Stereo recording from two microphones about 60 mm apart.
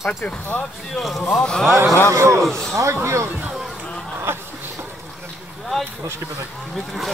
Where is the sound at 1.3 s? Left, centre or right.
Centre.